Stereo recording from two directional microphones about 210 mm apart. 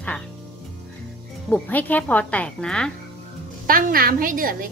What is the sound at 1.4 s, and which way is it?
Speech, 5° left (ahead or behind).